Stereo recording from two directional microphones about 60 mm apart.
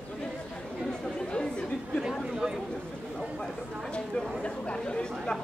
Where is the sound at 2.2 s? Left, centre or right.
Centre.